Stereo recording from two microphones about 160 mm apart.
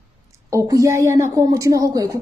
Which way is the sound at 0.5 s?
20° right (ahead or behind).